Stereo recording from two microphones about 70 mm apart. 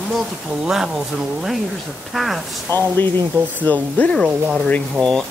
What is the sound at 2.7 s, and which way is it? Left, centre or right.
Speech, left.